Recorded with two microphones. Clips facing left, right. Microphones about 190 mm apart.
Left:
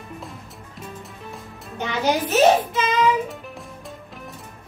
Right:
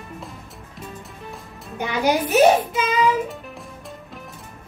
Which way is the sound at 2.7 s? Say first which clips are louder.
Even; centre (ahead or behind).